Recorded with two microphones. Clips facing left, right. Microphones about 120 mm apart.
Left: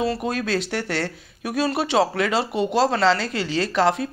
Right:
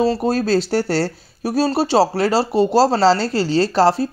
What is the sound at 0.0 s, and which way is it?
Speech, 35° right (ahead or behind).